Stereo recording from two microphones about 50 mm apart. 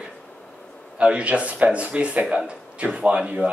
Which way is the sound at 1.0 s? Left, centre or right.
Right.